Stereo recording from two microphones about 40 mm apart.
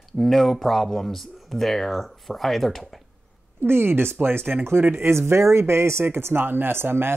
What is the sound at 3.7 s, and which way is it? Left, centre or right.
Speech, right.